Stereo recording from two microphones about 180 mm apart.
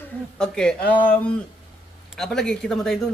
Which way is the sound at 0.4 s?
5° left (ahead or behind).